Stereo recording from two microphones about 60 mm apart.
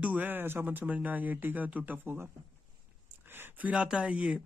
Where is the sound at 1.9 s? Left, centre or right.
Right.